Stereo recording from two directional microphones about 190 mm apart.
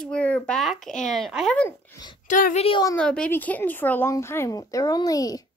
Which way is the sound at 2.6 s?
25° left (ahead or behind).